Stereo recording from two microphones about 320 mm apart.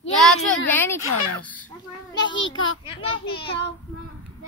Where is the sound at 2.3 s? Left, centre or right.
Left.